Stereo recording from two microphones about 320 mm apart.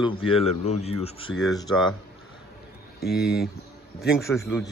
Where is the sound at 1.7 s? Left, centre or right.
Centre.